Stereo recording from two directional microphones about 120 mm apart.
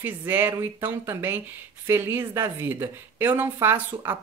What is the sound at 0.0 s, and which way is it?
A woman's voice, 15° right (ahead or behind).